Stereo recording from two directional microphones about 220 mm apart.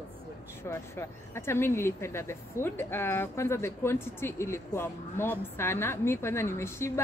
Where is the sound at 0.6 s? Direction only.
10° left (ahead or behind).